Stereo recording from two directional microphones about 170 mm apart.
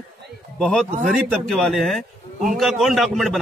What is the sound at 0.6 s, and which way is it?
A man's voice, 5° left (ahead or behind).